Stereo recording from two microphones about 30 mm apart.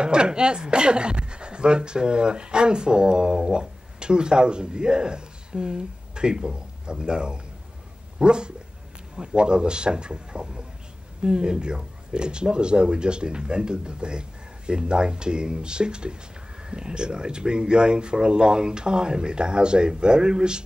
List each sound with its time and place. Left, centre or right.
0.0 s a man's voice: right